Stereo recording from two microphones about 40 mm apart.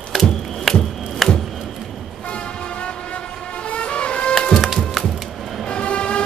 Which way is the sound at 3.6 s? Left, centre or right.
Left.